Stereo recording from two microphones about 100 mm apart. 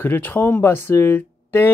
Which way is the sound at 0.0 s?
20° left (ahead or behind).